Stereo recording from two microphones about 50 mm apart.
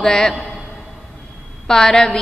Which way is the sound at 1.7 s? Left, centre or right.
Centre.